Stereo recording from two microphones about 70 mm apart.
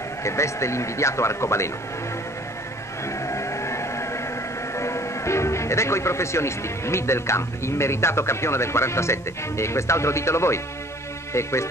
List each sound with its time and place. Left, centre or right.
0.2 s a man's voice: left
3.1 s music: left
4.7 s a man's voice: left